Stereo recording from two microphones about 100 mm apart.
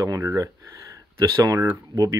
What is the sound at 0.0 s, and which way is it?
Speech, 35° right (ahead or behind).